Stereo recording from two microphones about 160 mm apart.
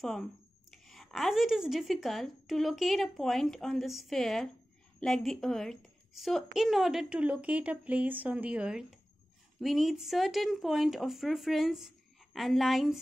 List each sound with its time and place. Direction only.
0.0 s speech: centre (ahead or behind)